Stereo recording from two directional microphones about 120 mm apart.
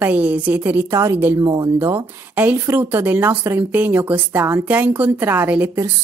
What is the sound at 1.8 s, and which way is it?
A woman's voice, 20° right (ahead or behind).